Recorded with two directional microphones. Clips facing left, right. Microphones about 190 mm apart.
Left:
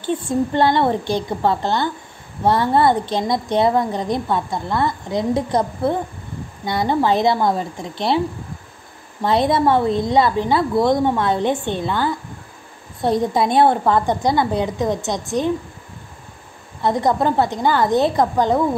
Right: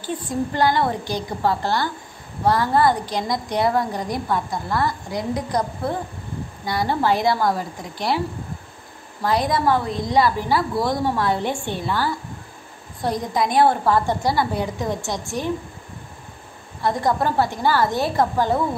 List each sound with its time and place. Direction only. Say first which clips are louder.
0.0 s a woman's voice: left 5 dB; 25° left (ahead or behind)
9.2 s a woman's voice: left 4 dB; 25° left (ahead or behind)
16.8 s a woman's voice: left 3 dB; 20° left (ahead or behind)